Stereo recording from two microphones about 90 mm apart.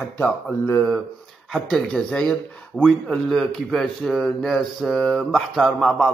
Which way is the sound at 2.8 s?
5° right (ahead or behind).